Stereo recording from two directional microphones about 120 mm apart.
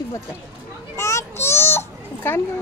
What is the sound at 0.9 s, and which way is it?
Children playing, 25° left (ahead or behind).